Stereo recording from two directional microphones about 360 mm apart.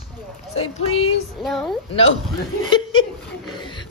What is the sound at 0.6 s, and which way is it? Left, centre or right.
Speech, centre.